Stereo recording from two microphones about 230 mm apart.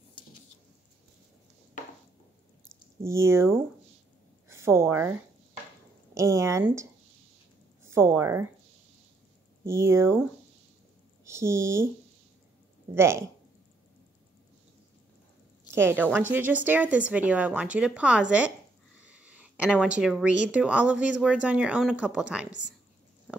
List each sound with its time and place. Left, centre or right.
0.2 s a sound: left
3.0 s a woman's voice: centre
6.1 s speech: centre
7.9 s speech: centre
9.7 s speech: centre
11.2 s speech: centre
12.9 s speech: centre
15.7 s speech: centre
19.0 s a sound: centre
20.0 s speech: centre